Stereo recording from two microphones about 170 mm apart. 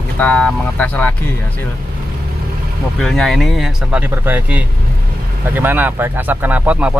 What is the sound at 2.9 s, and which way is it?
Speech, centre (ahead or behind).